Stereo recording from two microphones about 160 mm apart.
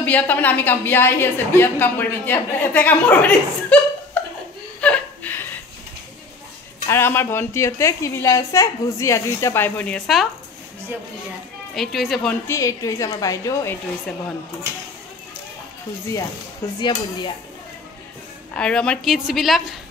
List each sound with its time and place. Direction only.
0.0 s a woman's voice: 10° left (ahead or behind)
4.7 s chuckle: 10° left (ahead or behind)
6.9 s a woman's voice: 15° left (ahead or behind)
11.7 s a woman's voice: centre (ahead or behind)
12.4 s a woman's voice: 20° left (ahead or behind)
16.6 s a woman's voice: 20° left (ahead or behind)
18.5 s a woman's voice: 5° left (ahead or behind)